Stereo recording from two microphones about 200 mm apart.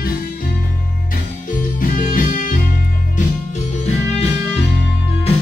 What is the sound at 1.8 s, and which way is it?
Music, 45° left (ahead or behind).